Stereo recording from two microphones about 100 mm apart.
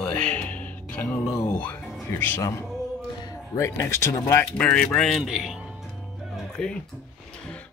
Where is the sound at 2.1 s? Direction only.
20° left (ahead or behind).